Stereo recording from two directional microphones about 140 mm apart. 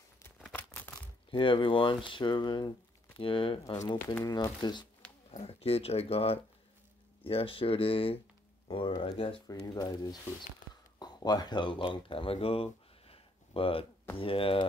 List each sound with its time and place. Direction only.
0.4 s crumpling: 10° left (ahead or behind)
1.3 s speech: 35° left (ahead or behind)
4.0 s speech: 25° left (ahead or behind)
5.0 s a sound: 5° left (ahead or behind)
5.4 s speech: 45° left (ahead or behind)
9.5 s speech: 30° left (ahead or behind)